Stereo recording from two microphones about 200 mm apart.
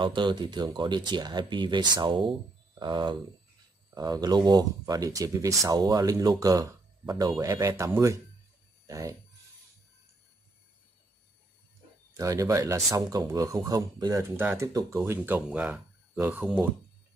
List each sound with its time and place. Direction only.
0.0 s speech: 25° right (ahead or behind)
12.2 s speech: 15° right (ahead or behind)